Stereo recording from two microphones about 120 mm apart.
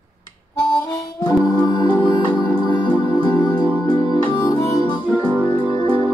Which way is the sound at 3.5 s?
15° right (ahead or behind).